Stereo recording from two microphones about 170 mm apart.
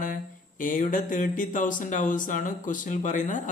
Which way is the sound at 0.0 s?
50° left (ahead or behind).